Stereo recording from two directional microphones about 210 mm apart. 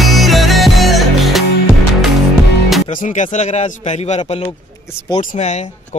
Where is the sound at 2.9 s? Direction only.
35° left (ahead or behind).